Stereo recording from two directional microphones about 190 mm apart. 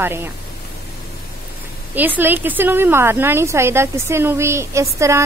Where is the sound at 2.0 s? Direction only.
10° right (ahead or behind).